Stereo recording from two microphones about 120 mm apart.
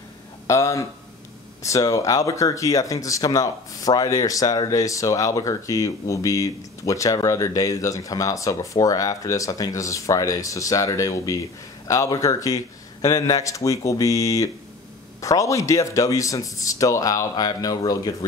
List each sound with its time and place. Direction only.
0.5 s speech: 25° left (ahead or behind)